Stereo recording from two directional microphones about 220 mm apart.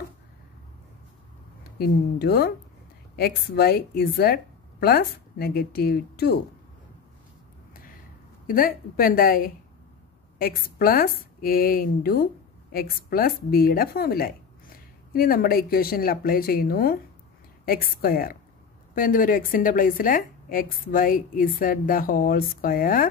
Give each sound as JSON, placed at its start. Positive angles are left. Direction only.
{"t": 1.8, "sound": "speech", "side_deg": 45}
{"t": 8.5, "sound": "a woman's voice", "side_deg": 40}